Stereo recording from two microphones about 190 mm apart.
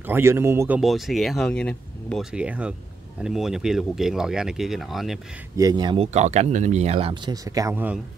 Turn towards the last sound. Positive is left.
turn(degrees=-10)  # may be behind; listen again after turning